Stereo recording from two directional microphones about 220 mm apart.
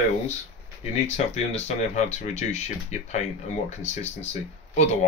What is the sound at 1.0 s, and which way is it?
Speech, 30° left (ahead or behind).